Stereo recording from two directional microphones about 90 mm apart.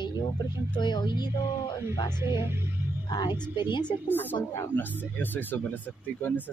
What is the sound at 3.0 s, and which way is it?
Speech, 50° left (ahead or behind).